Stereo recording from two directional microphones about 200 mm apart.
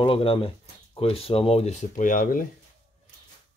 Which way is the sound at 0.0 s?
30° left (ahead or behind).